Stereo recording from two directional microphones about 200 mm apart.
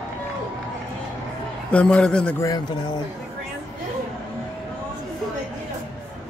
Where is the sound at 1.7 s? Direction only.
5° left (ahead or behind).